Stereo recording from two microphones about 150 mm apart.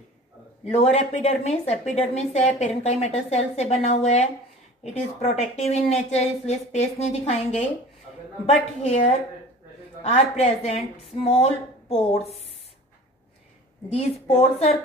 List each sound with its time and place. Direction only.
0.7 s a woman's voice: 45° left (ahead or behind)
10.0 s a woman's voice: 45° left (ahead or behind)
13.8 s a woman's voice: 40° left (ahead or behind)